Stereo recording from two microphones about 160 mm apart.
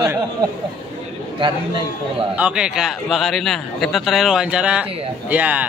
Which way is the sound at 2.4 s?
5° right (ahead or behind).